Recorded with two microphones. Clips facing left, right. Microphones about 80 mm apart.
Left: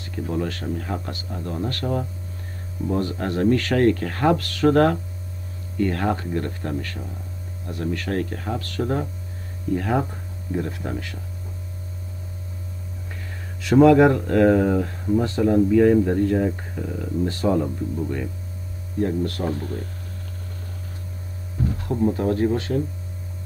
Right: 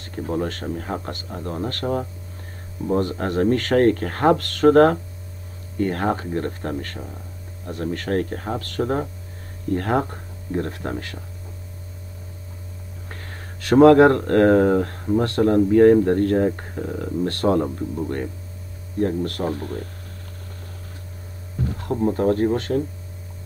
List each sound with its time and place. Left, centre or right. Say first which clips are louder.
0.0 s speech: right 1 dB; right
9.7 s speech: right 1 dB; right
13.1 s speech: right 2 dB; right
16.4 s speech: right 2 dB; right
18.9 s speech: right 1 dB; right
22.1 s speech: right 2 dB; right